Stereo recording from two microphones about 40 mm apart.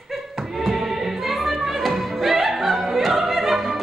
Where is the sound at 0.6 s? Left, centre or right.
Centre.